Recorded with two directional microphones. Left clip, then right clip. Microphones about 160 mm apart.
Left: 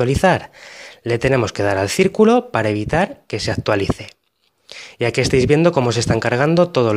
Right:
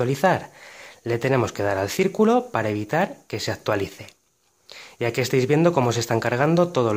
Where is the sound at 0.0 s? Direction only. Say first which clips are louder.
Left 5 dB; 35° left (ahead or behind).